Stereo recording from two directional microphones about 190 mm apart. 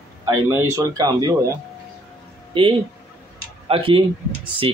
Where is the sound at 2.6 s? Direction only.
25° right (ahead or behind).